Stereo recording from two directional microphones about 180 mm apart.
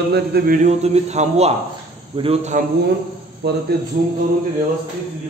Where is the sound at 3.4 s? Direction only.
65° right (ahead or behind).